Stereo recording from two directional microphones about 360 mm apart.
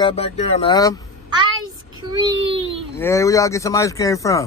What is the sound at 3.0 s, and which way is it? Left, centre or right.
Speech, centre.